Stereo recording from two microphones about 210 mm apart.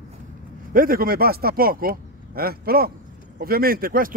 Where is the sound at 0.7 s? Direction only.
45° right (ahead or behind).